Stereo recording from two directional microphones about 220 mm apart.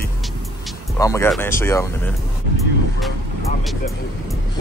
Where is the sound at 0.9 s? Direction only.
15° left (ahead or behind).